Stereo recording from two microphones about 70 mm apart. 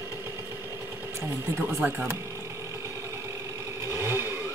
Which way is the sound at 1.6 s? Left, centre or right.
Right.